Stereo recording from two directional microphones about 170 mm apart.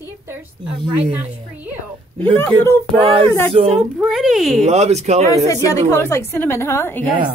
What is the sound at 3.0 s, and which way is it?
Speech, 30° right (ahead or behind).